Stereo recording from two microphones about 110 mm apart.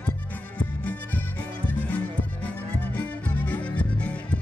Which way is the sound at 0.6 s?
15° left (ahead or behind).